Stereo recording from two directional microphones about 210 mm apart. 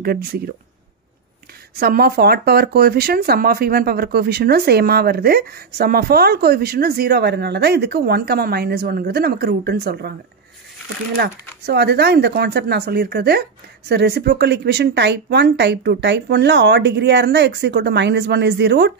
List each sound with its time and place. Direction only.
0.0 s speech: 45° right (ahead or behind)
1.8 s speech: 45° right (ahead or behind)
11.1 s speech: 50° right (ahead or behind)